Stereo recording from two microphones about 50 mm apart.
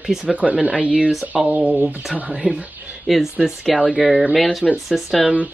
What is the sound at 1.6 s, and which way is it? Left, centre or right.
Speech, centre.